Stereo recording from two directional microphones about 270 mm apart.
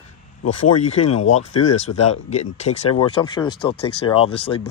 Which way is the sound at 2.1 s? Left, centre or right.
Left.